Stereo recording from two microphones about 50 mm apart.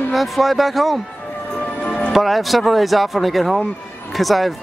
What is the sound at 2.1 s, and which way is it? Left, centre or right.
Speech, centre.